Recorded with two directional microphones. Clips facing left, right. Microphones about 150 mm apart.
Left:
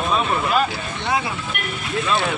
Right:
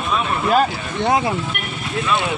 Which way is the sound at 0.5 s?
45° right (ahead or behind).